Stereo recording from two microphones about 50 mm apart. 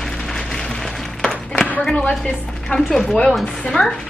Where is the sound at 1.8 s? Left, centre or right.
Centre.